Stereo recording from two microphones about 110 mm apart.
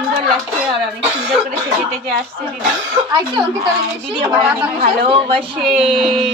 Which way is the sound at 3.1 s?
45° right (ahead or behind).